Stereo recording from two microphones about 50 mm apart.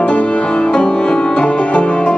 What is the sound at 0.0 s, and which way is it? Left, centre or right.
Music, left.